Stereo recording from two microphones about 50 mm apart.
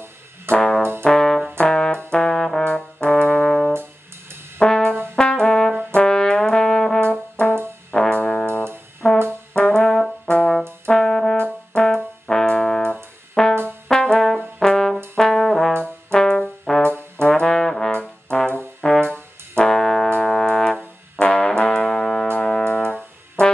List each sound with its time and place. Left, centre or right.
0.6 s brass instrument: centre
2.6 s brass instrument: left; by 7.0 s centre
7.1 s brass instrument: left
9.0 s brass instrument: centre
9.8 s brass instrument: centre
10.2 s brass instrument: left
15.1 s trombone: centre
16.1 s brass instrument: centre
17.2 s trombone: centre
17.9 s brass instrument: left
19.7 s brass instrument: centre
22.7 s music: left